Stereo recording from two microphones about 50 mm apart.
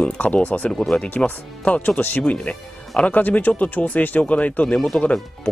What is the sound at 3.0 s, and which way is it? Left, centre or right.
Speech, left.